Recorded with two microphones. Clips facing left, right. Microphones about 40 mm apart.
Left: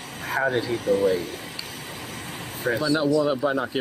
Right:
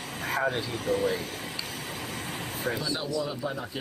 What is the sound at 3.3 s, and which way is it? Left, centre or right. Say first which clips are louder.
Speech: left 10 dB; left.